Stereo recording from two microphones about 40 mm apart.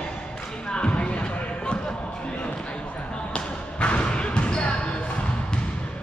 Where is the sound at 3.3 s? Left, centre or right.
Left.